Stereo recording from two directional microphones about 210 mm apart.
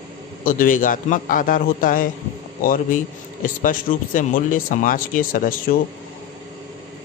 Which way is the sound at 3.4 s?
40° left (ahead or behind).